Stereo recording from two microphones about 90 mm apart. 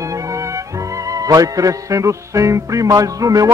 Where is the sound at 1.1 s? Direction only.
40° right (ahead or behind).